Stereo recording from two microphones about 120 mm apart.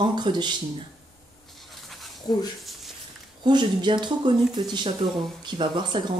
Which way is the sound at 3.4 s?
40° right (ahead or behind).